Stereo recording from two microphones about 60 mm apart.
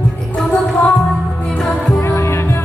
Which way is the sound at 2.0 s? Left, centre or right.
Left.